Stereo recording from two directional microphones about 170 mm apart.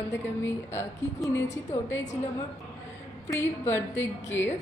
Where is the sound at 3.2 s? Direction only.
15° left (ahead or behind).